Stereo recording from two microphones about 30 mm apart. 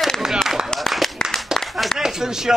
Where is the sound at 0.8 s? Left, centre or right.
Centre.